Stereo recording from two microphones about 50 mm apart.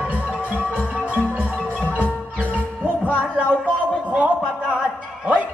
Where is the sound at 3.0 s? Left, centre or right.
Right.